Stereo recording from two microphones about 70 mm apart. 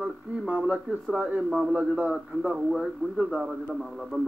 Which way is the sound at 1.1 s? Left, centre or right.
Right.